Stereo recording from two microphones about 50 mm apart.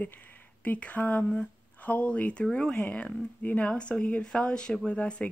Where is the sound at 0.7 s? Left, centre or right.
Left.